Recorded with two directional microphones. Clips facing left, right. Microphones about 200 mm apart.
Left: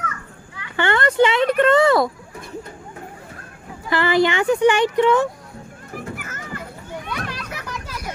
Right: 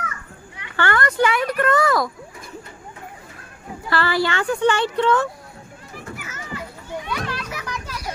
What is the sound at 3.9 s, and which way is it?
Speech, 20° left (ahead or behind).